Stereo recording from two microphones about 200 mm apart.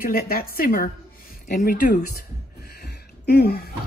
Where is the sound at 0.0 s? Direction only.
50° left (ahead or behind).